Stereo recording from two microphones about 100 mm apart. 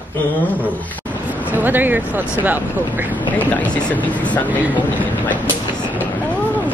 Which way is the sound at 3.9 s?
15° left (ahead or behind).